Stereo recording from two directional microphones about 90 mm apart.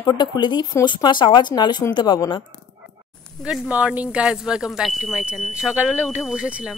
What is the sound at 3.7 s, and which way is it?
Speech, 15° right (ahead or behind).